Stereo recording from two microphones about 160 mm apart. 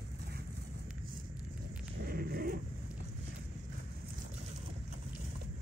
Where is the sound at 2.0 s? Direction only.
70° right (ahead or behind).